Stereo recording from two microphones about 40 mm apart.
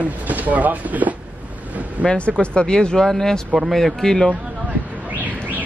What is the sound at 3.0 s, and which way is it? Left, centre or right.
Speech, centre.